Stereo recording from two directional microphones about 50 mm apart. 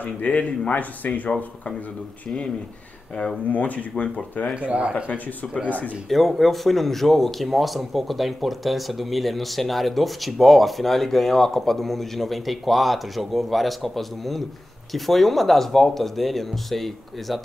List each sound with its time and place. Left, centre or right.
0.0 s speech: left
3.4 s speech: left
4.6 s speech: right
6.0 s speech: centre